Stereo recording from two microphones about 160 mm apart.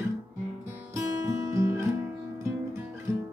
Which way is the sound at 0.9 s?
20° right (ahead or behind).